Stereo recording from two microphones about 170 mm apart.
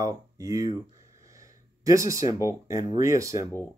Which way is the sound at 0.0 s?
20° right (ahead or behind).